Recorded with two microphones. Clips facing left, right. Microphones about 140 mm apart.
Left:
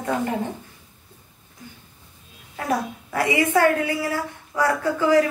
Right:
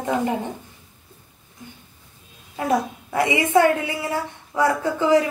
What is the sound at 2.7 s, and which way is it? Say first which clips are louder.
A woman's voice: right 3 dB; 20° right (ahead or behind).